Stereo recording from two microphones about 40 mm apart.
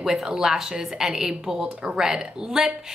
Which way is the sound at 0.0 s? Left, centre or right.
Centre.